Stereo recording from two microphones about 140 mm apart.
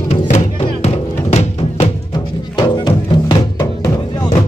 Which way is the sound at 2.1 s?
30° left (ahead or behind).